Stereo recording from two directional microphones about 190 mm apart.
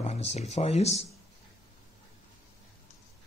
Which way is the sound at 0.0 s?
35° left (ahead or behind).